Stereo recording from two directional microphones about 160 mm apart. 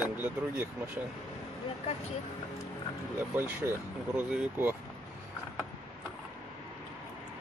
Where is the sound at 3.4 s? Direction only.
10° right (ahead or behind).